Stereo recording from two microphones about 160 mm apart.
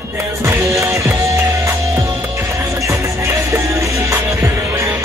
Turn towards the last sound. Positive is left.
turn(degrees=-20)  # may be behind; listen again after turning